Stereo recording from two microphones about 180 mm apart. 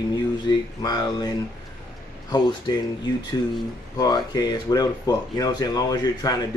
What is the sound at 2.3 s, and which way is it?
Speech, 25° left (ahead or behind).